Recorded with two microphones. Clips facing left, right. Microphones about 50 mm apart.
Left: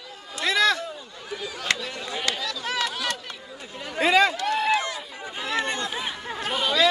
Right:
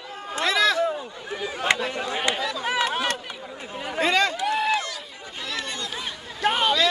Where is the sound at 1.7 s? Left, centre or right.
Right.